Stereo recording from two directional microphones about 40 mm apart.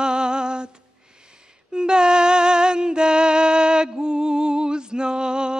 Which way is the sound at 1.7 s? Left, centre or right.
Right.